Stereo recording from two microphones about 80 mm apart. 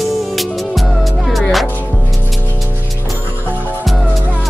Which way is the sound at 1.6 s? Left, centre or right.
Left.